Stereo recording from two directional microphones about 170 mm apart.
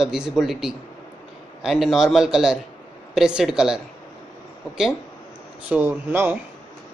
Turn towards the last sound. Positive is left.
turn(degrees=-10)  # may be behind; listen again after turning